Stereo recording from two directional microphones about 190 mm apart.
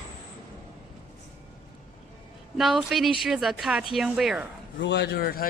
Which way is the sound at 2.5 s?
Centre (ahead or behind).